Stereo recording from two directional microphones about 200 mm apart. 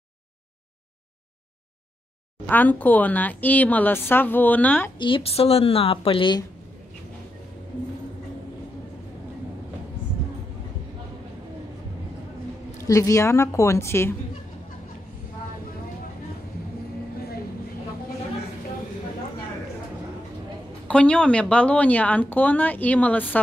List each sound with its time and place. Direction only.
2.4 s speech: 10° left (ahead or behind)
4.9 s speech: 25° left (ahead or behind)
12.8 s speech: 15° left (ahead or behind)
20.9 s speech: 5° left (ahead or behind)